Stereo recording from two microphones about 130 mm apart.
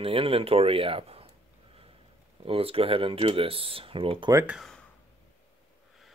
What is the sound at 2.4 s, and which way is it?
A man's voice, 45° right (ahead or behind).